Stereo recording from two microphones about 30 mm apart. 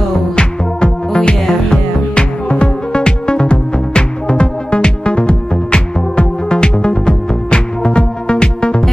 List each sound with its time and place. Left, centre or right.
0.8 s music: left